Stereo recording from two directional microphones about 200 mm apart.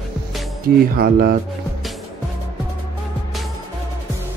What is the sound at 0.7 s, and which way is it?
Speech, 50° right (ahead or behind).